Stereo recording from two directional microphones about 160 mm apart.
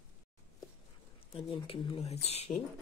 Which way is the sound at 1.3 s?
35° left (ahead or behind).